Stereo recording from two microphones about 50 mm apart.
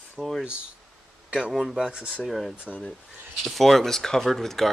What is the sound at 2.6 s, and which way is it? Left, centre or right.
Speech, left.